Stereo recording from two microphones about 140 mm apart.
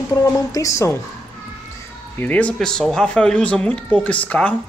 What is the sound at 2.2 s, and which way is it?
Speech, 10° left (ahead or behind).